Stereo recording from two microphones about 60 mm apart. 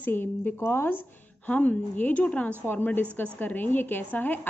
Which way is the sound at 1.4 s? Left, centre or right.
Left.